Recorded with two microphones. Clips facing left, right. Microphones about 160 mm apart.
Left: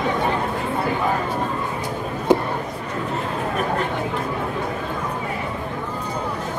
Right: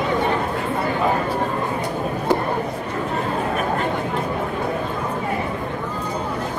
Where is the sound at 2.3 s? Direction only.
20° left (ahead or behind).